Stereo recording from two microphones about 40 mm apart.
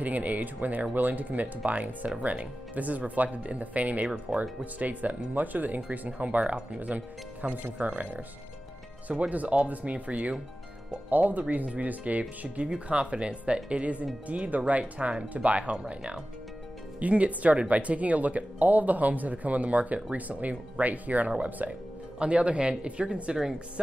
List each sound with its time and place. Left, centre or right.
0.0 s speech: right
7.4 s speech: right
7.9 s speech: right
9.3 s speech: right
12.6 s speech: right
22.2 s speech: right